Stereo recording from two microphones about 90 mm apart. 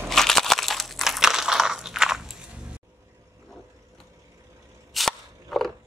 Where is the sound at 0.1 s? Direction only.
5° left (ahead or behind).